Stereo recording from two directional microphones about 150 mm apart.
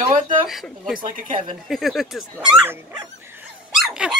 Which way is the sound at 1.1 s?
60° right (ahead or behind).